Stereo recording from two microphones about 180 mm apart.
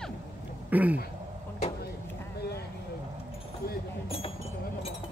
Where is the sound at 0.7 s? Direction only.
10° right (ahead or behind).